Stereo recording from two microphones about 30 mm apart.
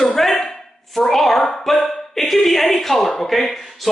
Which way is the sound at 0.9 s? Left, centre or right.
Centre.